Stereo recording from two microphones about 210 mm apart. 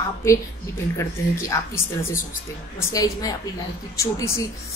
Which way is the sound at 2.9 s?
15° left (ahead or behind).